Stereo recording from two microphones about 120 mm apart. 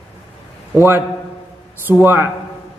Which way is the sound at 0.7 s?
20° right (ahead or behind).